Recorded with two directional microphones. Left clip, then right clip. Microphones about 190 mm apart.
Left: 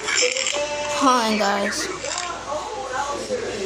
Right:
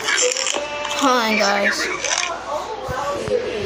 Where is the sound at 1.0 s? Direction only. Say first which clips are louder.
Right 2 dB; 5° left (ahead or behind).